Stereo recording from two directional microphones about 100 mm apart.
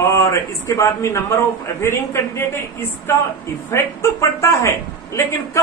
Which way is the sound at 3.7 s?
30° left (ahead or behind).